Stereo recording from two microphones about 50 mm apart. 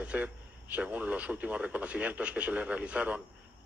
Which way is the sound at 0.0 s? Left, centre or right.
Right.